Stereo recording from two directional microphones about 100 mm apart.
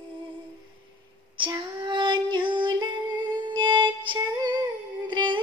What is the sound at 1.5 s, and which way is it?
Female singing, 50° right (ahead or behind).